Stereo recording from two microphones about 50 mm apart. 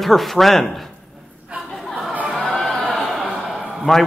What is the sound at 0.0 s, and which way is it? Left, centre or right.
Speech, centre.